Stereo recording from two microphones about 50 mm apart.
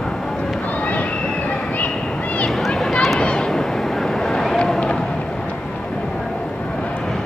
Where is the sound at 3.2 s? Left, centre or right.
Centre.